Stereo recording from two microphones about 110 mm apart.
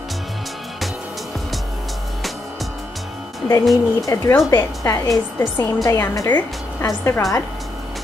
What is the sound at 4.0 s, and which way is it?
Speech, 30° left (ahead or behind).